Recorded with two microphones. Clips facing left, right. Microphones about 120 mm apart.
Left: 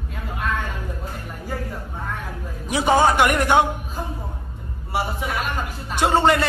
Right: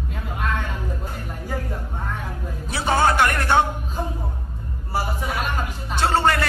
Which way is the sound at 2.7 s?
15° left (ahead or behind).